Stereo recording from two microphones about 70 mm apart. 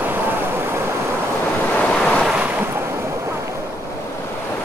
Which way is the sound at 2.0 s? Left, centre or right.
Centre.